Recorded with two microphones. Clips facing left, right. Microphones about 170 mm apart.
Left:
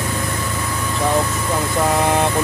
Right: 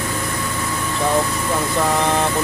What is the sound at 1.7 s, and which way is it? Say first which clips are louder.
Speech: left 2 dB; 10° left (ahead or behind).